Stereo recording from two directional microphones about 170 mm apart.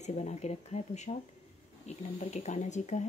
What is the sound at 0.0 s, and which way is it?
Speech, 40° left (ahead or behind).